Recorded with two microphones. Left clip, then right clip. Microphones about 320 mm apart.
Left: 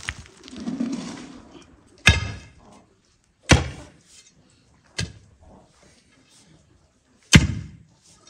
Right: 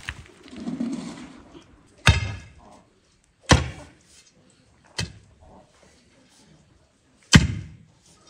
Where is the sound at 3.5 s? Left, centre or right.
Centre.